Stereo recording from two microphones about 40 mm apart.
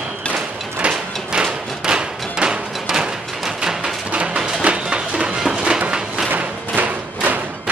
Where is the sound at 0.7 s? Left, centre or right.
Right.